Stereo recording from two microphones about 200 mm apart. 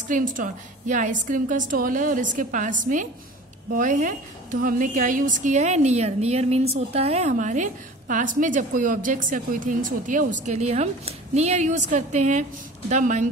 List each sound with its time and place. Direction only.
0.1 s a woman's voice: 40° right (ahead or behind)